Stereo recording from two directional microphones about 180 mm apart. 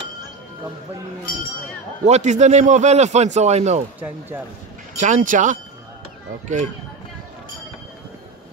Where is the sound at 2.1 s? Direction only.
40° right (ahead or behind).